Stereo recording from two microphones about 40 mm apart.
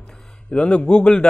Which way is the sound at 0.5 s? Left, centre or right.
Left.